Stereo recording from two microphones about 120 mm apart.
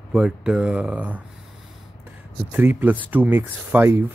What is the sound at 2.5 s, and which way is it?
Speech, 15° right (ahead or behind).